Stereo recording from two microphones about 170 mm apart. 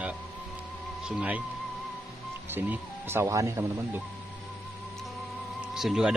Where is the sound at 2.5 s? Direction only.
10° right (ahead or behind).